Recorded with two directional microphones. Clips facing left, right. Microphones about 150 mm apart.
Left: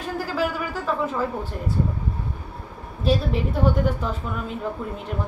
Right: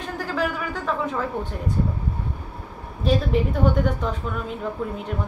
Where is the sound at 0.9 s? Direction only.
5° left (ahead or behind).